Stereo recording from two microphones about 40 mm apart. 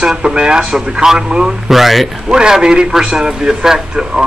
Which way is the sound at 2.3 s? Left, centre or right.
Right.